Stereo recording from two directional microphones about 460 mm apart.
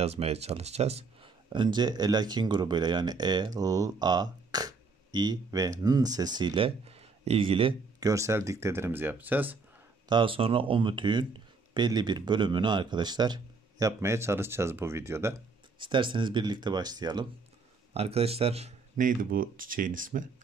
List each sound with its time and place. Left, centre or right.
0.0 s speech: centre